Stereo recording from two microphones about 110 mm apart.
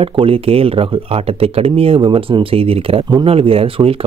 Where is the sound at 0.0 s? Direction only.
55° right (ahead or behind).